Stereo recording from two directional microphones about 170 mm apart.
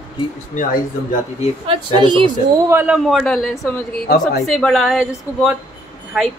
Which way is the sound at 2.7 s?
10° right (ahead or behind).